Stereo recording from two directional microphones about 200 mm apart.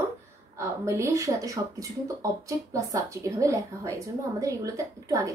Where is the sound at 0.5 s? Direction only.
15° right (ahead or behind).